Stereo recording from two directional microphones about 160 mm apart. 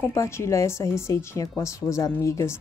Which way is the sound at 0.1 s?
20° left (ahead or behind).